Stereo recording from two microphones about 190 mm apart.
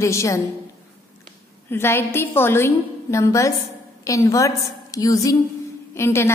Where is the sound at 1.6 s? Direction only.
10° left (ahead or behind).